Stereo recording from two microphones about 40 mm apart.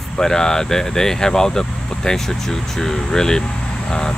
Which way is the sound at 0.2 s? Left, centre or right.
Centre.